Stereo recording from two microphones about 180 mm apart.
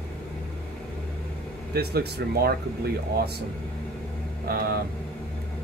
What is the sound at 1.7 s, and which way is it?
Speech, 60° right (ahead or behind).